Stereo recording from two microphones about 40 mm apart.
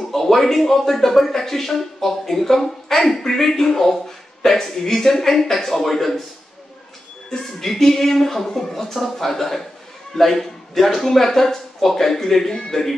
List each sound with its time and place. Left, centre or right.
0.1 s a man's voice: centre
7.2 s a man's voice: centre